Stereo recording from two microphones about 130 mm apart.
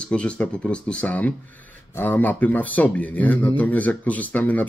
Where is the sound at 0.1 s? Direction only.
10° left (ahead or behind).